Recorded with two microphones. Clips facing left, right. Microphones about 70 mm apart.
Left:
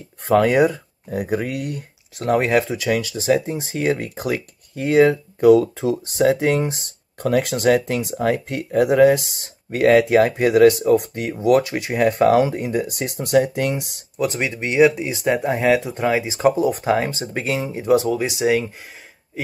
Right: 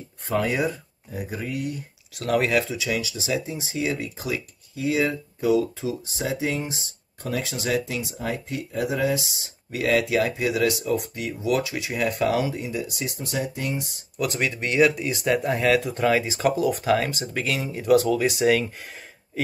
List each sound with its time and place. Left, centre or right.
0.2 s speech: left
2.1 s speech: left
2.8 s speech: left
14.1 s speech: left